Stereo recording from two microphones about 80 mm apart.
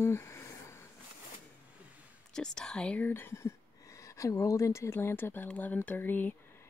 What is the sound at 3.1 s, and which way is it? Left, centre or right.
Speech, left.